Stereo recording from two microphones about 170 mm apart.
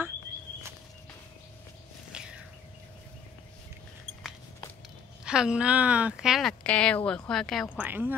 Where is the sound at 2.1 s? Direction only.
5° right (ahead or behind).